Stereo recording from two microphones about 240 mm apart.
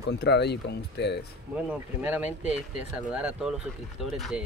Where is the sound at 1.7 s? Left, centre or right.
Centre.